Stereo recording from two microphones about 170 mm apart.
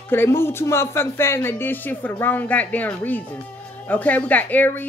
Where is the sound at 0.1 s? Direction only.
15° left (ahead or behind).